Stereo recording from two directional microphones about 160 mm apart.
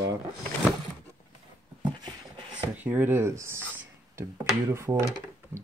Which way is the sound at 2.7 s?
10° right (ahead or behind).